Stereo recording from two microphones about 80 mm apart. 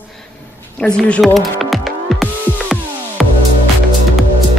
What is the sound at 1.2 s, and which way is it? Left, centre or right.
Music, centre.